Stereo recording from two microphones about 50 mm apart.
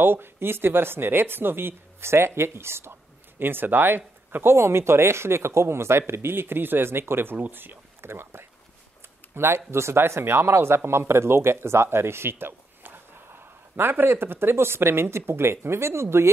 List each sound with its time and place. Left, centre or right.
0.0 s speech: right
9.7 s speech: right